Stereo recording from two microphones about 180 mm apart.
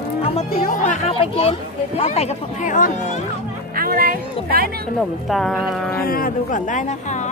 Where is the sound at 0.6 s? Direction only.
45° left (ahead or behind).